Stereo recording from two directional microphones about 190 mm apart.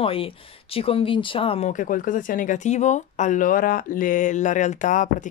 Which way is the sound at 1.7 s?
45° left (ahead or behind).